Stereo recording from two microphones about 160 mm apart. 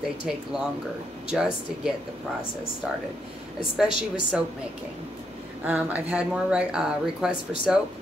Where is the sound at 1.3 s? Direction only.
5° right (ahead or behind).